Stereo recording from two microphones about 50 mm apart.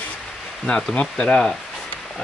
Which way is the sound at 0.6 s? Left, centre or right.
Left.